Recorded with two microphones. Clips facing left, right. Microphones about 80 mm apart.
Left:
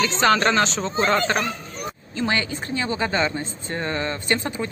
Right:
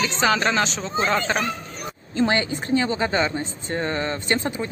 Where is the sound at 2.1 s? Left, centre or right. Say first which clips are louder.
Right 3 dB; right.